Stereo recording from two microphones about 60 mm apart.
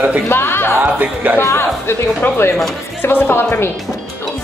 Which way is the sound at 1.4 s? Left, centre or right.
Left.